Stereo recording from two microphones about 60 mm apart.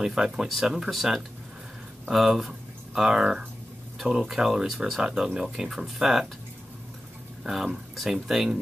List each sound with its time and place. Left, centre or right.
0.0 s speech: centre
7.4 s speech: centre